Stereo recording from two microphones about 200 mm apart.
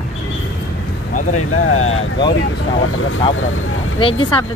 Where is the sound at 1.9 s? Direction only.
20° left (ahead or behind).